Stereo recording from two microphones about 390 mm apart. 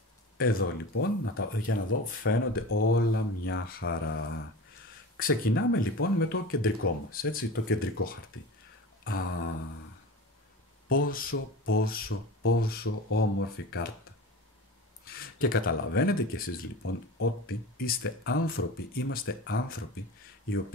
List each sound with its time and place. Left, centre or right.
0.4 s speech: left
9.0 s a sound: left
10.9 s speech: left
15.1 s speech: left